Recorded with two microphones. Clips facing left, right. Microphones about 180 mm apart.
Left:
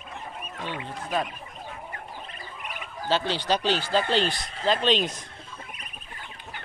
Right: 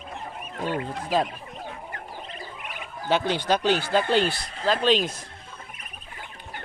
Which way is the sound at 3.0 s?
15° right (ahead or behind).